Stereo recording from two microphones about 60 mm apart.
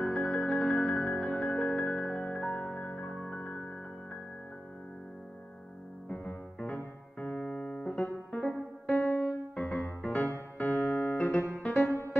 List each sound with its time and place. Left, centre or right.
0.0 s music: centre
6.0 s music: centre
7.5 s music: centre; by 9.3 s left
9.6 s music: left
10.6 s piano: left
11.6 s music: left